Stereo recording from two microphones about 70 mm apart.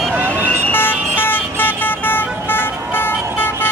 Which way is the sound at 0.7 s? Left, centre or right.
Left.